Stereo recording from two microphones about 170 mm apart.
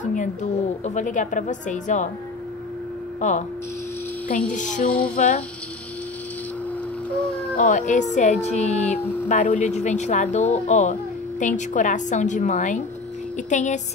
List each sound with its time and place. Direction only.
0.0 s a woman's voice: 45° left (ahead or behind)
3.2 s hum: 45° left (ahead or behind)
4.6 s a woman's voice: 45° left (ahead or behind)
7.5 s a woman's voice: 50° left (ahead or behind)